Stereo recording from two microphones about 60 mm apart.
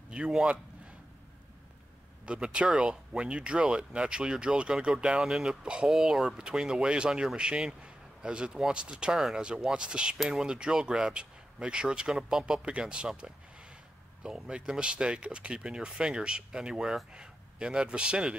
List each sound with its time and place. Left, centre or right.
0.1 s a man's voice: centre
2.2 s speech: centre
10.1 s speech: centre